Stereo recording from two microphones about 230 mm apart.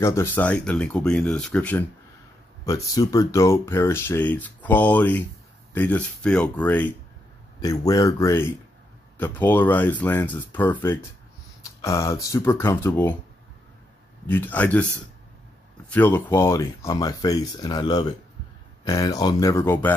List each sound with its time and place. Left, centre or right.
0.0 s speech: centre
14.2 s speech: centre
15.9 s speech: centre